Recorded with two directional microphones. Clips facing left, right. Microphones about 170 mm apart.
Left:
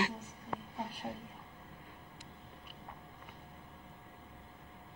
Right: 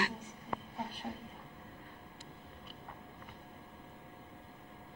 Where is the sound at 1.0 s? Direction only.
15° left (ahead or behind).